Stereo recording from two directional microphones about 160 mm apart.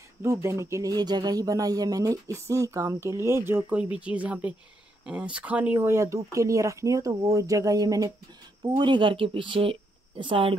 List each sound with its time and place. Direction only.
0.2 s speech: 15° right (ahead or behind); by 10.5 s 35° right (ahead or behind)